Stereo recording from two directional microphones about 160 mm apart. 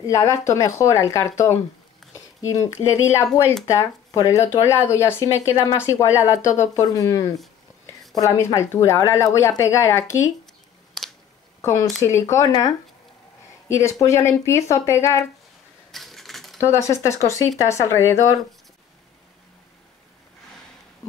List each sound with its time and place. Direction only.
0.0 s speech: 20° left (ahead or behind)
11.0 s a sound: centre (ahead or behind)
11.6 s speech: 20° left (ahead or behind)
15.9 s typewriter: centre (ahead or behind)
16.6 s speech: 20° left (ahead or behind)